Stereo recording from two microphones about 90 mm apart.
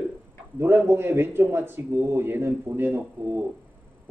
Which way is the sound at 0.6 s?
25° right (ahead or behind).